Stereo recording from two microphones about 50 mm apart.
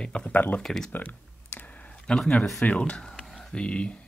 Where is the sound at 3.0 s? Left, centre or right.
Centre.